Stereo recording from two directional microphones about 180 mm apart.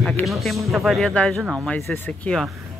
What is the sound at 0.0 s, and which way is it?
Speech, centre (ahead or behind).